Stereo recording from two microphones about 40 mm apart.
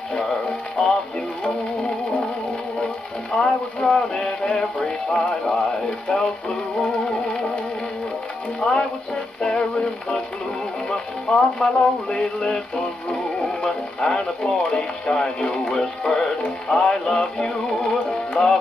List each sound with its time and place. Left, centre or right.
0.1 s music: left
8.5 s speech: left
9.4 s music: left
13.1 s speech: centre
15.7 s music: centre
18.4 s music: left